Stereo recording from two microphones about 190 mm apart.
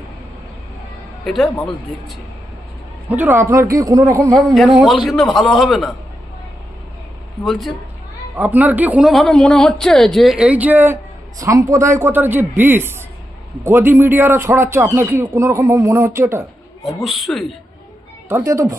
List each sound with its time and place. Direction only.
1.2 s a man's voice: centre (ahead or behind)
3.1 s a man's voice: 10° right (ahead or behind)
4.4 s a man's voice: centre (ahead or behind)
7.4 s a man's voice: centre (ahead or behind)
17.0 s a man's voice: centre (ahead or behind)
18.3 s a man's voice: 15° right (ahead or behind)